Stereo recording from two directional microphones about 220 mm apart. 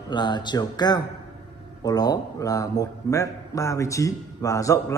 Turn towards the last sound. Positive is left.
turn(degrees=15)  # may be behind; listen again after turning